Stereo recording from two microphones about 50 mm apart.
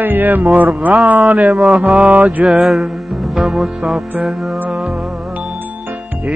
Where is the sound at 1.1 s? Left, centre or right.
Right.